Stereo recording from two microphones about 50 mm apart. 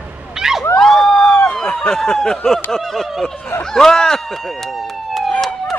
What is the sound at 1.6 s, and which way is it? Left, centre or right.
Speech, centre.